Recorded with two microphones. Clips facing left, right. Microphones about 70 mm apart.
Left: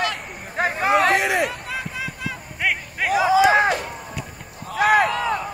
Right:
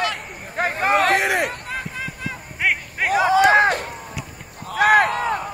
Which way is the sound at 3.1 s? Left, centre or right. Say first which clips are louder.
Right 1 dB; right.